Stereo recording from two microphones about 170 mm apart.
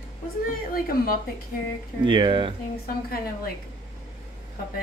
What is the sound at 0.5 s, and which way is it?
Speech, 55° left (ahead or behind).